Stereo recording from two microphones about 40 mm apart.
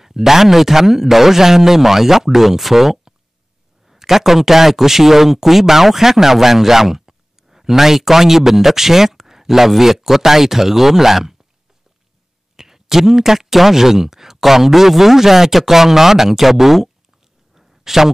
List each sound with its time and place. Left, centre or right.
0.0 s speech: centre
12.5 s speech: centre
17.6 s a sound: centre